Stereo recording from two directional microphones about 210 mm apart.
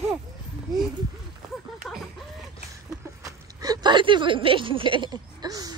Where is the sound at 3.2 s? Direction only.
15° right (ahead or behind).